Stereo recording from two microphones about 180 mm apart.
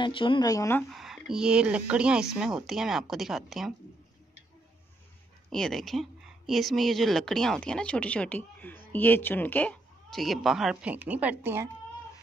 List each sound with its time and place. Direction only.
0.0 s speech: 30° left (ahead or behind)
0.9 s a woman's voice: centre (ahead or behind)
5.5 s a woman's voice: centre (ahead or behind)